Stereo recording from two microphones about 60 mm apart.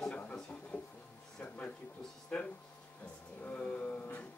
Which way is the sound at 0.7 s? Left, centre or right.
Left.